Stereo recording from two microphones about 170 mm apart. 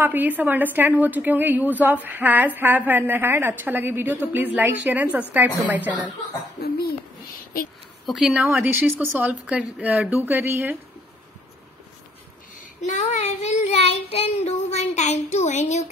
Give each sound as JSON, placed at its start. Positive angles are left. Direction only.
{"t": 0.0, "sound": "a woman's voice", "side_deg": -10}
{"t": 6.6, "sound": "a sound", "side_deg": 65}
{"t": 8.1, "sound": "a woman's voice", "side_deg": -5}
{"t": 12.8, "sound": "child singing", "side_deg": 45}